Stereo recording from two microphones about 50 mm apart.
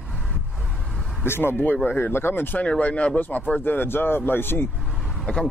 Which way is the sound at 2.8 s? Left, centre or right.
Left.